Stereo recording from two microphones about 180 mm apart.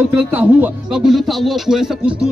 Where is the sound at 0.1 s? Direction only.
10° right (ahead or behind).